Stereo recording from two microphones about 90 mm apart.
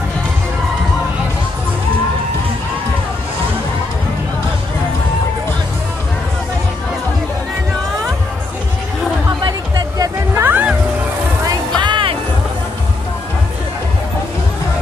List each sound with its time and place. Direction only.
9.4 s music: 45° right (ahead or behind)
10.3 s music: 25° right (ahead or behind)
11.4 s music: 60° right (ahead or behind)